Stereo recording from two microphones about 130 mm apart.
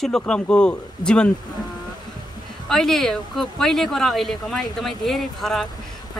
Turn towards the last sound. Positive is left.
turn(degrees=0)  # may be behind; listen again after turning